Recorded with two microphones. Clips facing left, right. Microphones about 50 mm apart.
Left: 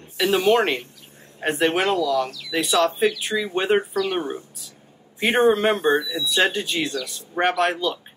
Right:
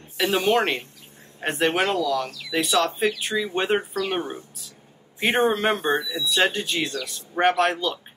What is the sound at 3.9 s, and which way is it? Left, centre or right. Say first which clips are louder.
Speech: left 3 dB; right.